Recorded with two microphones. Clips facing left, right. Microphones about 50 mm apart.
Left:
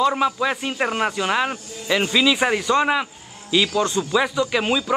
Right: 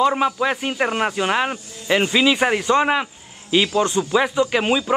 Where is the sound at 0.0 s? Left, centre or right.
Centre.